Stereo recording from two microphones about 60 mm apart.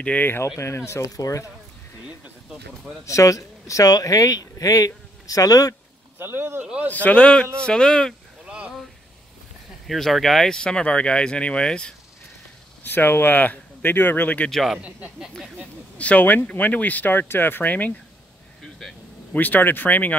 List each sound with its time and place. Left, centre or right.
0.0 s speech: left
0.6 s speech: left
1.0 s speech: left
3.1 s speech: left
6.1 s speech: right
6.9 s speech: left
8.5 s a sound: right
9.8 s speech: centre
12.8 s speech: left
14.5 s a man's voice: centre
14.8 s speech: right
16.0 s speech: left
18.6 s vehicle: centre
19.3 s speech: left